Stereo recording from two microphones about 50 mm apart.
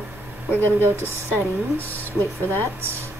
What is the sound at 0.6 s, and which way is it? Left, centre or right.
Speech, left.